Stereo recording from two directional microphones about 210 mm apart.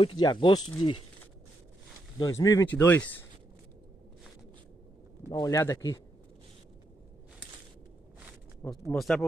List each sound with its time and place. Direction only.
0.2 s speech: 20° left (ahead or behind)
2.1 s speech: 15° left (ahead or behind)
5.3 s speech: 15° left (ahead or behind)
8.9 s speech: centre (ahead or behind)